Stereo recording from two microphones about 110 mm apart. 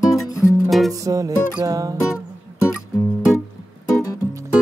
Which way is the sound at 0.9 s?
30° right (ahead or behind).